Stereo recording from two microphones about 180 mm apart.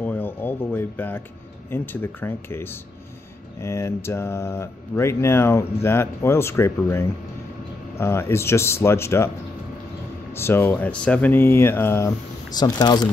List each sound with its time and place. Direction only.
0.0 s a sound: 10° left (ahead or behind)
1.7 s mantra: 10° left (ahead or behind)
3.6 s mantra: 15° left (ahead or behind)
10.3 s mantra: 15° left (ahead or behind)
12.5 s speech: 20° left (ahead or behind)